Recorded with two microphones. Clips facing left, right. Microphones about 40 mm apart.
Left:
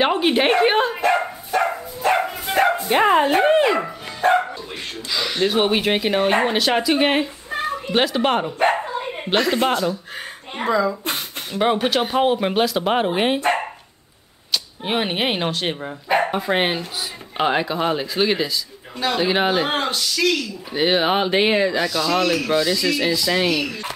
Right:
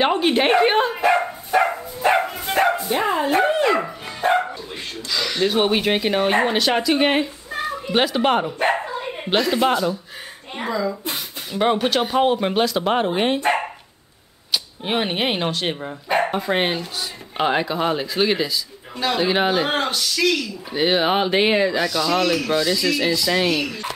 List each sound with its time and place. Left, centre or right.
0.0 s dog: centre
2.9 s speech: left
3.6 s speech: centre
5.1 s speech: centre
9.0 s chuckle: centre
10.6 s speech: left
11.5 s speech: centre